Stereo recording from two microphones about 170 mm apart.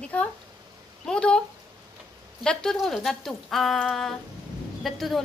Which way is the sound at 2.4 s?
Centre (ahead or behind).